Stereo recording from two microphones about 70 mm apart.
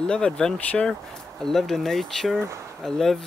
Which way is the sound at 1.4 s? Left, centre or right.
Centre.